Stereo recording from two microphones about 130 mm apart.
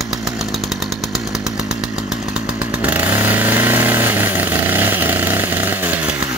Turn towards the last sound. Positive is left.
turn(degrees=-10)  # may be behind; listen again after turning